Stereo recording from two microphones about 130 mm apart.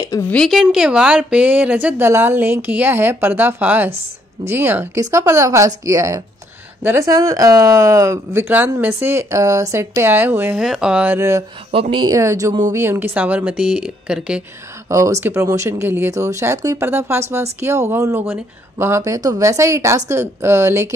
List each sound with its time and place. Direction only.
0.3 s a woman's voice: 5° left (ahead or behind); by 10.6 s 15° right (ahead or behind)
10.6 s speech: 5° right (ahead or behind)
11.1 s speech: 20° right (ahead or behind)
11.7 s speech: 40° right (ahead or behind)
12.1 s a woman's voice: 25° right (ahead or behind); by 14.4 s 5° right (ahead or behind)
14.9 s speech: 25° right (ahead or behind)